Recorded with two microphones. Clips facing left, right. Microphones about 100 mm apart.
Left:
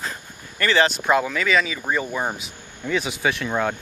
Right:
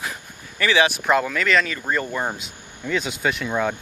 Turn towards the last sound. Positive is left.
turn(degrees=0)  # may be behind; listen again after turning